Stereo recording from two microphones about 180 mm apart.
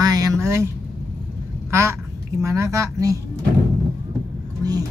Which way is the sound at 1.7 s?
15° right (ahead or behind).